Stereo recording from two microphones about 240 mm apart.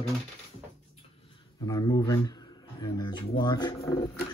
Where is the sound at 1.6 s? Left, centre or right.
Centre.